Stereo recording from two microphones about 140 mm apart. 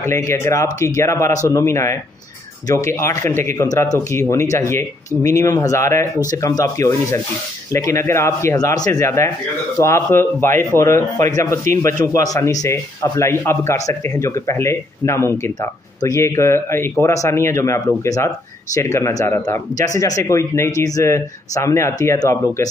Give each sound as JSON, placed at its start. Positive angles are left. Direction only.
{"t": 0.0, "sound": "speech", "side_deg": 20}